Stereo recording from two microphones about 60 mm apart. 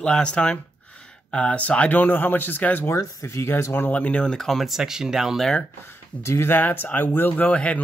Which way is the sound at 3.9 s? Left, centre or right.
Left.